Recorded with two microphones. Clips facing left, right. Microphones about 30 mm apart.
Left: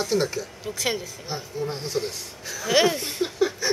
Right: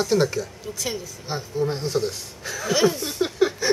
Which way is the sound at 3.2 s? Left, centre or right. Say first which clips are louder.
Right 3 dB; centre.